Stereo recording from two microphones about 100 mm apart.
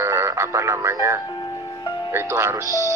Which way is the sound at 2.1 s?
25° right (ahead or behind).